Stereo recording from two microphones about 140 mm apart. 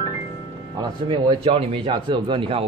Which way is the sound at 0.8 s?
40° right (ahead or behind).